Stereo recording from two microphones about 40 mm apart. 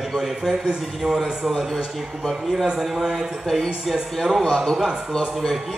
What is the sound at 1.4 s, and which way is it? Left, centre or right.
A man's voice, centre.